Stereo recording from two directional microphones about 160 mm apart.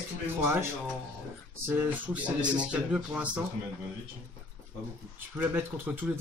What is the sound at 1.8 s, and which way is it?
Speech, 10° right (ahead or behind).